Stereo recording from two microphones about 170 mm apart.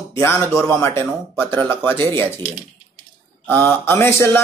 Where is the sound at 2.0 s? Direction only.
30° right (ahead or behind).